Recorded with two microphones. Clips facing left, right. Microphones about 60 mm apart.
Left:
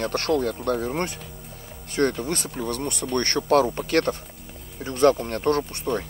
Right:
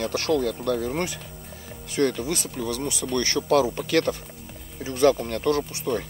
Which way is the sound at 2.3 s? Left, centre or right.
Left.